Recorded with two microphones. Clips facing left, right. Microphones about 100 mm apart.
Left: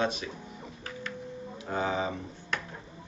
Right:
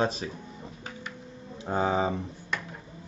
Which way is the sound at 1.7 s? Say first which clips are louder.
Right 4 dB; 30° right (ahead or behind).